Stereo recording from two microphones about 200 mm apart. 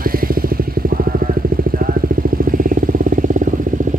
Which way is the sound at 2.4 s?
45° right (ahead or behind).